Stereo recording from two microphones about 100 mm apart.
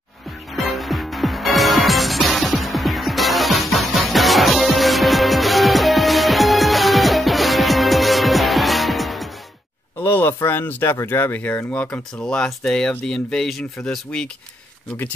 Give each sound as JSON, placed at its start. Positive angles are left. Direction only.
{"t": 0.5, "sound": "music", "side_deg": 0}
{"t": 10.0, "sound": "speech", "side_deg": 20}